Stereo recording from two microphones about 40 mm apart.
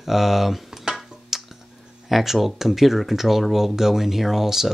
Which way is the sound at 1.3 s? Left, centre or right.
Centre.